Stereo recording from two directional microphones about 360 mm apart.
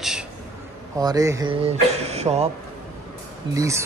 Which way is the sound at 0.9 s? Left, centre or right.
Centre.